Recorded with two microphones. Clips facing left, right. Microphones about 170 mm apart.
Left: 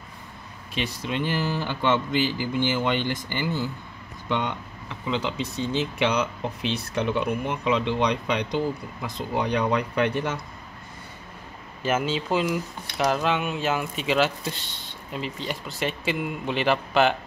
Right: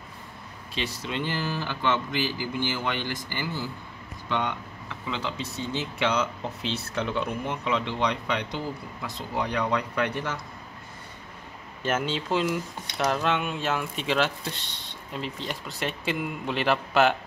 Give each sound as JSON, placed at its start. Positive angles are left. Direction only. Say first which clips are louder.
{"t": 0.7, "sound": "speech", "louder": "left 3 dB", "side_deg": 15}
{"t": 11.8, "sound": "speech", "louder": "left 3 dB", "side_deg": 5}